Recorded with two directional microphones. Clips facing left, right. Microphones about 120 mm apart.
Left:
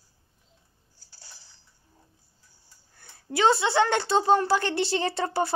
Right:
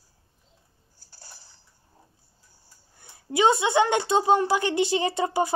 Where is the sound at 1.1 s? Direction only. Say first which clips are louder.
Right 3 dB; 50° right (ahead or behind).